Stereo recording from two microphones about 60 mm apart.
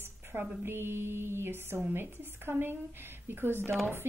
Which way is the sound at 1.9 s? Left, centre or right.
Right.